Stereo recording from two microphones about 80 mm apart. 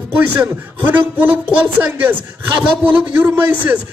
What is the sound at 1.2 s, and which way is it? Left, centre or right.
A man's voice, right.